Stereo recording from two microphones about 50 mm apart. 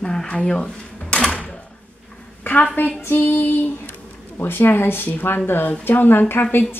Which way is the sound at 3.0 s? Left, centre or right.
Left.